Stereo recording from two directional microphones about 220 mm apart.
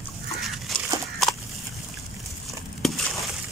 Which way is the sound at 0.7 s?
Centre (ahead or behind).